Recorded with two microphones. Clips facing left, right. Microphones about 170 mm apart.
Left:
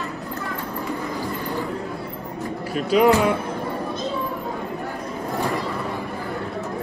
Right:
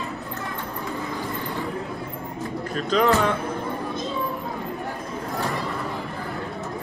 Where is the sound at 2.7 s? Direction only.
10° left (ahead or behind).